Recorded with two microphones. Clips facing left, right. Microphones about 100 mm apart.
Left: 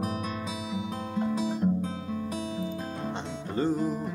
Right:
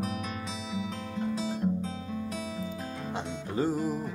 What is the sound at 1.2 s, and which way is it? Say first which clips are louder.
Music: left 3 dB; 55° left (ahead or behind).